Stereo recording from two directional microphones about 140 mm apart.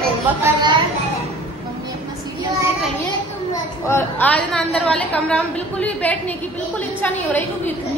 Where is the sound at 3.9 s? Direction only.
10° left (ahead or behind).